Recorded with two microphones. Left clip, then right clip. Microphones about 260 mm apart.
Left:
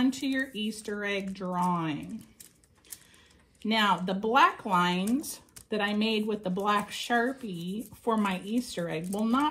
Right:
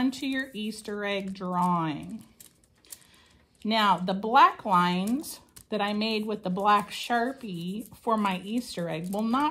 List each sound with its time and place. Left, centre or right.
0.0 s speech: right
3.6 s speech: right